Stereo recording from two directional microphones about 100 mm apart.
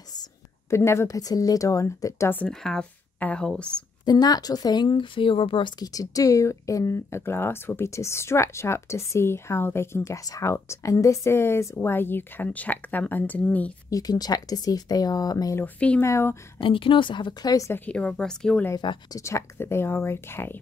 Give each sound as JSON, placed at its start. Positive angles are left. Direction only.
{"t": 0.7, "sound": "speech", "side_deg": 30}
{"t": 2.3, "sound": "a woman's voice", "side_deg": 10}
{"t": 4.0, "sound": "speech", "side_deg": 40}
{"t": 4.8, "sound": "speech", "side_deg": 55}
{"t": 5.9, "sound": "speech", "side_deg": 35}
{"t": 13.8, "sound": "speech", "side_deg": 40}
{"t": 15.5, "sound": "a woman's voice", "side_deg": 15}
{"t": 16.0, "sound": "speech", "side_deg": 25}
{"t": 16.5, "sound": "a woman's voice", "side_deg": 60}
{"t": 17.6, "sound": "a woman's voice", "side_deg": 15}
{"t": 18.8, "sound": "a woman's voice", "side_deg": 50}
{"t": 19.1, "sound": "speech", "side_deg": 30}